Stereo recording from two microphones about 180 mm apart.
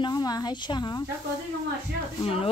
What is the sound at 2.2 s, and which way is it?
Speech, 30° left (ahead or behind).